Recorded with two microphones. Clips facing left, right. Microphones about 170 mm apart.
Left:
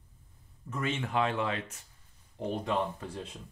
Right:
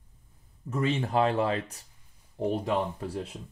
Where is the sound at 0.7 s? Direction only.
35° right (ahead or behind).